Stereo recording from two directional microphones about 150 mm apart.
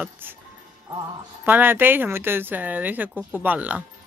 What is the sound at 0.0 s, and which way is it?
Speech, 15° right (ahead or behind).